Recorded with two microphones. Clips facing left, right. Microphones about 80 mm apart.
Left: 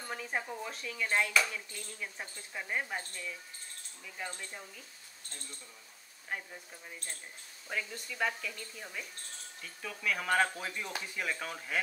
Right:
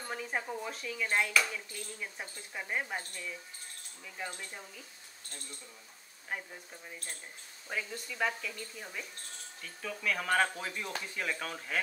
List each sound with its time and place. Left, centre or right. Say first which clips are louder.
0.1 s speech: right 1 dB; centre
6.3 s speech: even; centre
7.6 s speech: even; centre